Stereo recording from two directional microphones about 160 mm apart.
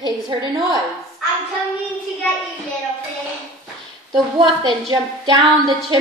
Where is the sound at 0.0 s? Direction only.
30° right (ahead or behind).